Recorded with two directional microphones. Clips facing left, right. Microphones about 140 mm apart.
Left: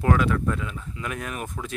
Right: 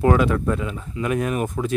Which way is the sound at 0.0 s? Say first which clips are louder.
Right 4 dB; 15° right (ahead or behind).